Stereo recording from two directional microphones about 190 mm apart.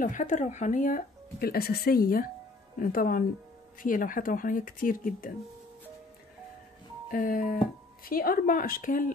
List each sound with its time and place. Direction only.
0.0 s speech: 40° left (ahead or behind)
7.1 s speech: 50° left (ahead or behind)